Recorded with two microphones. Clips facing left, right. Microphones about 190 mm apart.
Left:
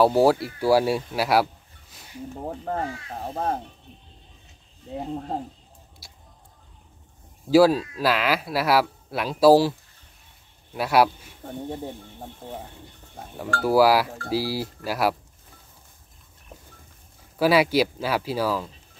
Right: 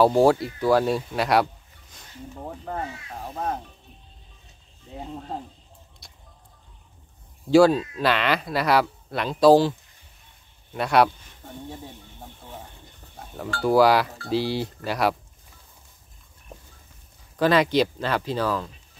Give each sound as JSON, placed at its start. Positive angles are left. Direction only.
{"t": 0.0, "sound": "speech", "side_deg": 5}
{"t": 2.4, "sound": "speech", "side_deg": 40}
{"t": 6.0, "sound": "music", "side_deg": 5}
{"t": 7.4, "sound": "speech", "side_deg": 5}
{"t": 12.4, "sound": "speech", "side_deg": 40}
{"t": 13.6, "sound": "speech", "side_deg": 5}
{"t": 17.4, "sound": "speech", "side_deg": 5}